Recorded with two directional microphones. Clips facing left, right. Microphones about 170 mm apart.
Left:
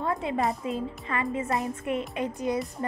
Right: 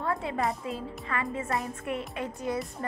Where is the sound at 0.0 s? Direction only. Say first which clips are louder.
Left 2 dB; 20° left (ahead or behind).